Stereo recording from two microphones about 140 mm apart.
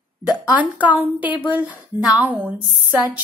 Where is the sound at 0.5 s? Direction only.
10° right (ahead or behind).